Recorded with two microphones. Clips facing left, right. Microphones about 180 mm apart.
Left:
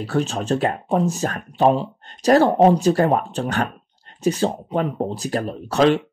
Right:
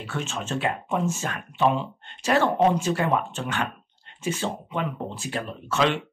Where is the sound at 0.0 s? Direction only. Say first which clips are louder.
Left 9 dB; 35° left (ahead or behind).